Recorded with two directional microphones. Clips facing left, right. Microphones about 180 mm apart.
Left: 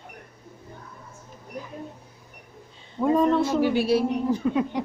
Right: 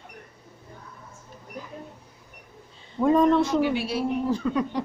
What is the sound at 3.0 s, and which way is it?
Speech, 5° left (ahead or behind).